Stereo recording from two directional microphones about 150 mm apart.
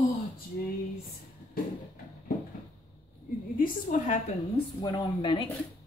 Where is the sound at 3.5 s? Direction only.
65° left (ahead or behind).